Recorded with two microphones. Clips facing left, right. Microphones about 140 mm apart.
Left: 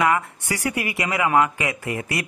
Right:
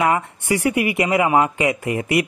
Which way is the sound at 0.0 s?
25° right (ahead or behind).